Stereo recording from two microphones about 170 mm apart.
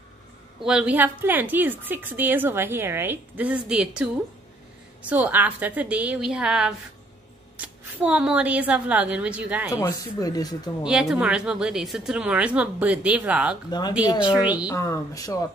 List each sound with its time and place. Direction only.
0.7 s a woman's voice: 5° right (ahead or behind)
5.1 s a woman's voice: 10° right (ahead or behind)
9.7 s speech: 20° left (ahead or behind)
10.8 s a woman's voice: 5° right (ahead or behind)
13.7 s speech: 25° left (ahead or behind)
14.2 s a woman's voice: 5° right (ahead or behind)
14.7 s speech: 20° left (ahead or behind)